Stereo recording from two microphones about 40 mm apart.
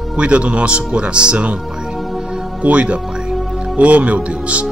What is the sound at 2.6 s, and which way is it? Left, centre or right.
Speech, right.